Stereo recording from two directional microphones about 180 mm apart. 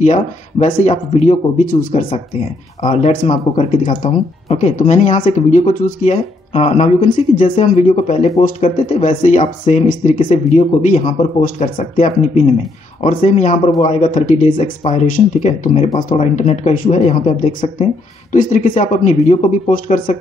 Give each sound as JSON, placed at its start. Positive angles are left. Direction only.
{"t": 0.0, "sound": "speech", "side_deg": 45}
{"t": 2.8, "sound": "speech", "side_deg": 40}
{"t": 3.3, "sound": "speech", "side_deg": 30}
{"t": 13.1, "sound": "speech", "side_deg": 45}
{"t": 18.3, "sound": "speech", "side_deg": 45}